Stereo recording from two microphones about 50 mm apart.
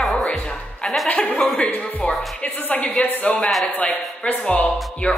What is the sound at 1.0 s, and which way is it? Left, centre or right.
Speech, left.